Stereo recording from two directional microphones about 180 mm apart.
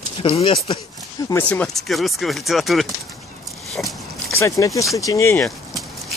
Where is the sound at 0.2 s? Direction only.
30° left (ahead or behind).